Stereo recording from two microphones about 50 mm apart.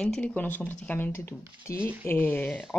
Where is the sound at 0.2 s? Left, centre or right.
Left.